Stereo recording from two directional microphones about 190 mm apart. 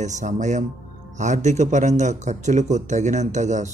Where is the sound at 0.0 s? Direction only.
40° right (ahead or behind).